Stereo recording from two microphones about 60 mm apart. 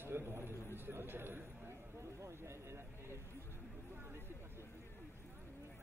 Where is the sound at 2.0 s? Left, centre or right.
Right.